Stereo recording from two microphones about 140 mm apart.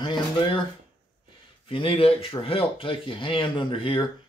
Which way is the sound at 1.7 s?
40° left (ahead or behind).